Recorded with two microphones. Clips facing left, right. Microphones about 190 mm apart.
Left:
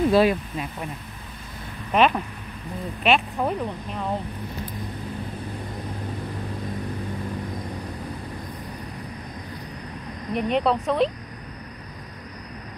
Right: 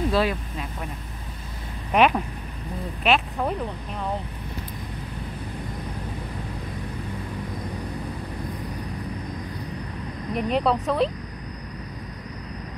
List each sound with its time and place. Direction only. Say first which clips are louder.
0.1 s speech: left 5 dB; 15° left (ahead or behind)
1.9 s speech: even; 10° right (ahead or behind)
10.3 s speech: left 1 dB; centre (ahead or behind)